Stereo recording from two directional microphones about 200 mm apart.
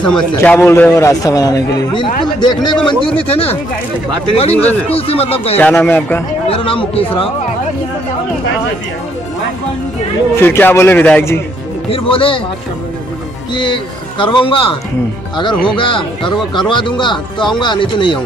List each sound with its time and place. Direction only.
0.0 s a man's voice: 5° left (ahead or behind); by 5.6 s 30° left (ahead or behind)
5.6 s a man's voice: 10° left (ahead or behind)
6.5 s speech: 25° left (ahead or behind)
10.4 s a man's voice: 10° left (ahead or behind)
11.9 s speech: 25° left (ahead or behind)
13.6 s speech: 25° left (ahead or behind)